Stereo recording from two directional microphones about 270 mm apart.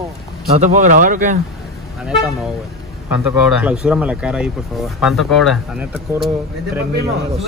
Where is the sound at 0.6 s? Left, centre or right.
Right.